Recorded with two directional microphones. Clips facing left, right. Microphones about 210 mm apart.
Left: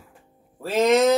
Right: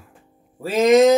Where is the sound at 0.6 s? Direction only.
10° right (ahead or behind).